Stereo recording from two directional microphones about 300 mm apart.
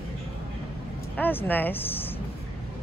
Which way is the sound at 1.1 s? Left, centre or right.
Centre.